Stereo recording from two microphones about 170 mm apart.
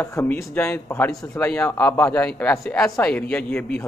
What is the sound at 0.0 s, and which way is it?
Speech, 15° left (ahead or behind).